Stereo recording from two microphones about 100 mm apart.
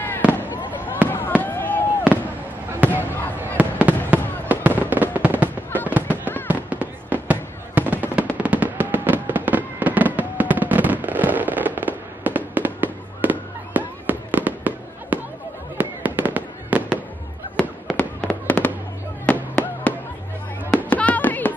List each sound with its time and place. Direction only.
0.2 s fireworks: 15° right (ahead or behind)
1.0 s fireworks: 20° left (ahead or behind)
3.3 s fireworks: 15° right (ahead or behind)
17.6 s fireworks: 5° left (ahead or behind)
20.7 s music: 15° left (ahead or behind)